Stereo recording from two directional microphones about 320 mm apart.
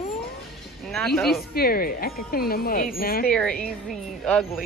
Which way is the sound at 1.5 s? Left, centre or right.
Left.